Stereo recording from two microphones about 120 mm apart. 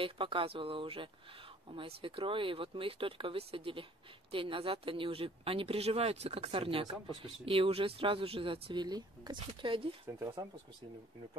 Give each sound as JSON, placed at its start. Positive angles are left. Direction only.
{"t": 0.0, "sound": "speech", "side_deg": -45}
{"t": 10.0, "sound": "speech", "side_deg": -25}